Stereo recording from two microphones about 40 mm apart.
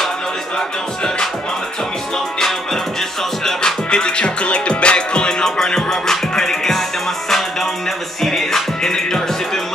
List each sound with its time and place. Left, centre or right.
3.4 s music: centre
8.2 s music: centre